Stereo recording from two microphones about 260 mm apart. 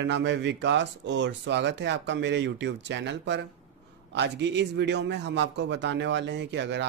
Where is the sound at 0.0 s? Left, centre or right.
Right.